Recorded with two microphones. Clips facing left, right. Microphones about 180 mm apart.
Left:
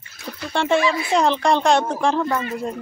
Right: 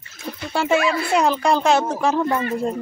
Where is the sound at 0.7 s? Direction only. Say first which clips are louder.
Even; 60° right (ahead or behind).